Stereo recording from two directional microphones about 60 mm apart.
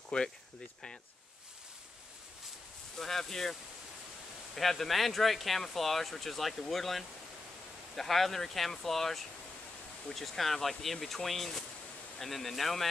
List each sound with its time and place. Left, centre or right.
0.1 s speech: centre
3.0 s speech: centre
4.6 s speech: centre